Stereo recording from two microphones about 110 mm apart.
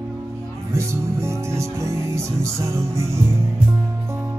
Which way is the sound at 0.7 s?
25° right (ahead or behind).